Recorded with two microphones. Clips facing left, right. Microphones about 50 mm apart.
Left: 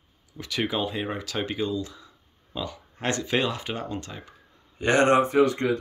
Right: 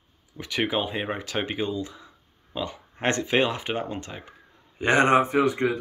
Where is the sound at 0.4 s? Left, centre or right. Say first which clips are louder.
Right 1 dB; right.